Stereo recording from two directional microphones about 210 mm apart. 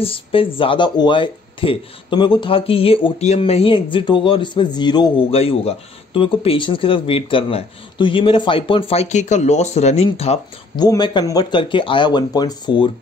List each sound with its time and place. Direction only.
0.0 s speech: 25° left (ahead or behind)
10.8 s speech: 20° left (ahead or behind)